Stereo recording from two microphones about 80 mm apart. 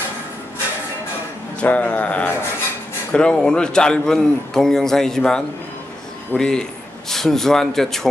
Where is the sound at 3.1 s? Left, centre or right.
Centre.